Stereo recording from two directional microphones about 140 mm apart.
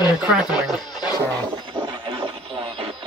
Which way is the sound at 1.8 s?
35° right (ahead or behind).